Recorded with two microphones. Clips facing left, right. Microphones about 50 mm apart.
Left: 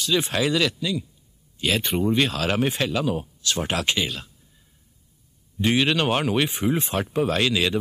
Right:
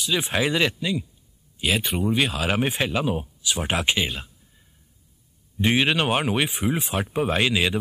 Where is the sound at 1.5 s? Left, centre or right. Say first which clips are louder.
Left 1 dB; centre.